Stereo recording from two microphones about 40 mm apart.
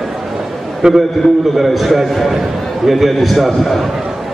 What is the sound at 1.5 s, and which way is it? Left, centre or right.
Speech, centre.